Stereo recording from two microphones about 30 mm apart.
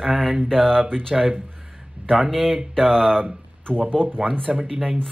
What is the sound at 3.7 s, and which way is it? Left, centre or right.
Speech, right.